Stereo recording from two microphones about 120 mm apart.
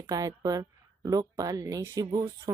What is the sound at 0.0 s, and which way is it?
Speech, 30° right (ahead or behind).